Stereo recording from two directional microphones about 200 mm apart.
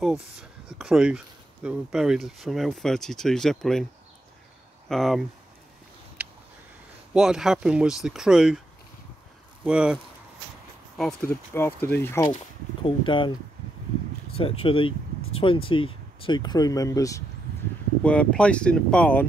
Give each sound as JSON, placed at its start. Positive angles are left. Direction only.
{"t": 0.0, "sound": "speech", "side_deg": 0}
{"t": 4.8, "sound": "speech", "side_deg": 0}
{"t": 6.2, "sound": "a sound", "side_deg": -5}
{"t": 7.2, "sound": "speech", "side_deg": -5}
{"t": 9.7, "sound": "speech", "side_deg": -5}
{"t": 11.5, "sound": "speech", "side_deg": 10}
{"t": 12.8, "sound": "speech", "side_deg": 25}
{"t": 14.3, "sound": "speech", "side_deg": 30}
{"t": 18.0, "sound": "speech", "side_deg": 5}